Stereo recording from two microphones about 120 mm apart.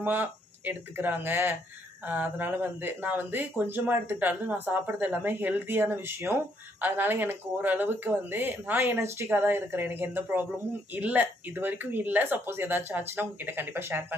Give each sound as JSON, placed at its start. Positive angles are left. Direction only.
{"t": 0.0, "sound": "speech", "side_deg": -15}